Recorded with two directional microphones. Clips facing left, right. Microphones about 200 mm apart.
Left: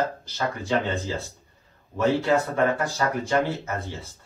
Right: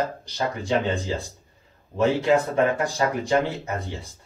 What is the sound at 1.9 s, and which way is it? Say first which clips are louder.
Speech: right 2 dB; 20° right (ahead or behind).